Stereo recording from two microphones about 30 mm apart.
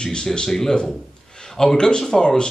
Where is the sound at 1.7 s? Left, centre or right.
Left.